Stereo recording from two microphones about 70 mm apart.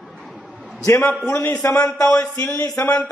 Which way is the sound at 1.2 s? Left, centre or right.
Left.